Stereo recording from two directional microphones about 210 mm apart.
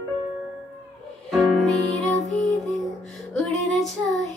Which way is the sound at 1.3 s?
Centre (ahead or behind).